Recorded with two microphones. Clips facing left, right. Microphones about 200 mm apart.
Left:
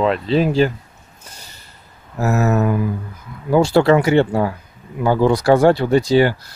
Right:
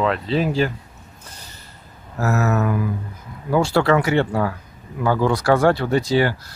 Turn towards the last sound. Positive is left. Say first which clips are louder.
# left 4 dB
turn(degrees=20)  # may be behind; listen again after turning